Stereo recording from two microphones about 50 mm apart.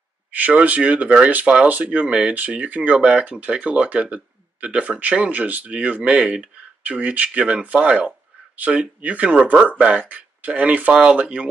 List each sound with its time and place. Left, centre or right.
0.3 s speech: right
10.9 s speech: centre